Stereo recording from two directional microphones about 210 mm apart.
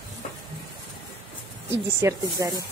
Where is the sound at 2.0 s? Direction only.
15° right (ahead or behind).